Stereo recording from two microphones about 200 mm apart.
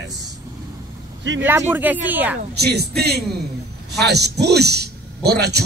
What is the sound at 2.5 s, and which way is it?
A man's voice, 55° right (ahead or behind).